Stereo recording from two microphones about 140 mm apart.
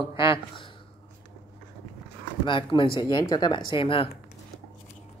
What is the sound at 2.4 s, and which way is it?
Speech, 35° left (ahead or behind).